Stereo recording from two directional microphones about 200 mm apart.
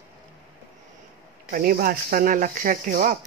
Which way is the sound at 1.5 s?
45° right (ahead or behind).